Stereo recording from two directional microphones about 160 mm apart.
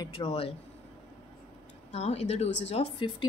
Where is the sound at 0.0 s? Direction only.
35° left (ahead or behind).